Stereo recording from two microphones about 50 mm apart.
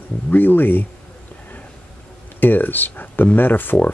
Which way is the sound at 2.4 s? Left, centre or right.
Left.